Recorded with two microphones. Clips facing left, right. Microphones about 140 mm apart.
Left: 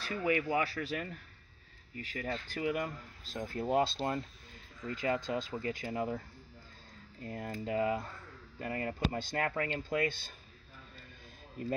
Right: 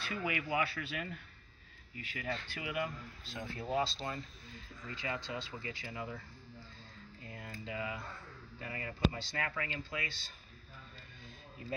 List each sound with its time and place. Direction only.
0.0 s speech: 40° left (ahead or behind)